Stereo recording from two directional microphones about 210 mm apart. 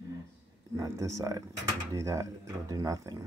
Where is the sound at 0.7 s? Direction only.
15° right (ahead or behind).